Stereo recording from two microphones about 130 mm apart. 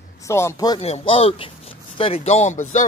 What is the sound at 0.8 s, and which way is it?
Speech, 50° left (ahead or behind).